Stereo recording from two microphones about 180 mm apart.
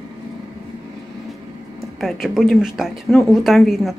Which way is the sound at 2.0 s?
Centre (ahead or behind).